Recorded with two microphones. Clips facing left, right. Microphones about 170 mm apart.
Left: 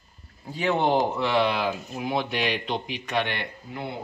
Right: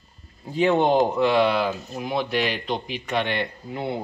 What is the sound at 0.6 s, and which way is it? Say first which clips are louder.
Speech: right 4 dB; 15° right (ahead or behind).